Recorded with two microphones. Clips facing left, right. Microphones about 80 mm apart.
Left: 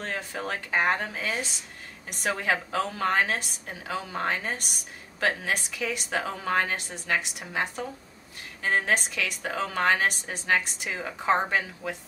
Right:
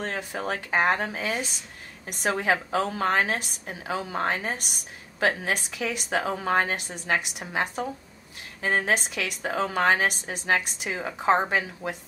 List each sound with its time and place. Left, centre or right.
0.0 s a woman's voice: centre